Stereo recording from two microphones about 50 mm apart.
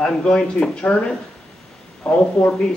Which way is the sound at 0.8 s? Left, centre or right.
Left.